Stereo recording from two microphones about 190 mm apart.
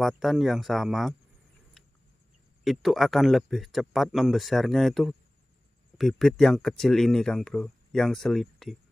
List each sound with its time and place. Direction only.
0.0 s speech: centre (ahead or behind)
2.6 s speech: centre (ahead or behind)